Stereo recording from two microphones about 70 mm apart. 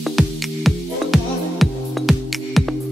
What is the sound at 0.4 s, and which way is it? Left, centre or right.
Music, centre.